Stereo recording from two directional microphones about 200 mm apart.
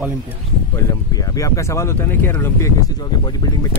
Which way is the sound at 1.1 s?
15° left (ahead or behind).